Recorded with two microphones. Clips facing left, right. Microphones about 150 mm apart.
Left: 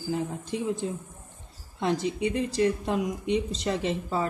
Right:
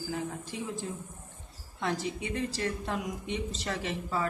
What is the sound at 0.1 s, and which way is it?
Speech, 20° left (ahead or behind).